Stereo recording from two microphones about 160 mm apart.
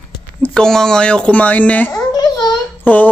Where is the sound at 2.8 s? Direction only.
10° left (ahead or behind).